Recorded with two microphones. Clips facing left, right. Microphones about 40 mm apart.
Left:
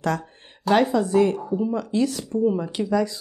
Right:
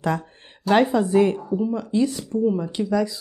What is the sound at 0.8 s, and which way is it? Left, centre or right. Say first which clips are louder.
Speech: right 1 dB; centre.